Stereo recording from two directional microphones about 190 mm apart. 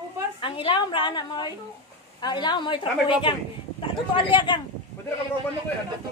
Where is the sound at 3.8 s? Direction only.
25° left (ahead or behind).